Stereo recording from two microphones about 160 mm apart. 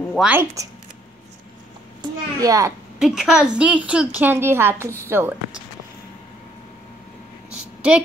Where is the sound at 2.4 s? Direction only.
20° right (ahead or behind).